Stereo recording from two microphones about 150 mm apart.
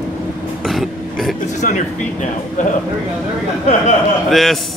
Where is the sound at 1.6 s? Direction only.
55° left (ahead or behind).